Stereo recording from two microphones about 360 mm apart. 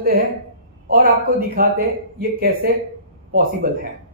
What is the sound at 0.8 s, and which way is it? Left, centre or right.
Speech, right.